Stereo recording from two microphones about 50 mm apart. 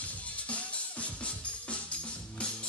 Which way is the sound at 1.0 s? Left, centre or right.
Left.